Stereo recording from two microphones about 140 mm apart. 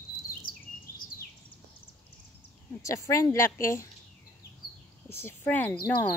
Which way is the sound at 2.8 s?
20° left (ahead or behind).